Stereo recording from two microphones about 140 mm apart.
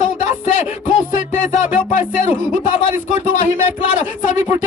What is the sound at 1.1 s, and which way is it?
Speech, 65° left (ahead or behind).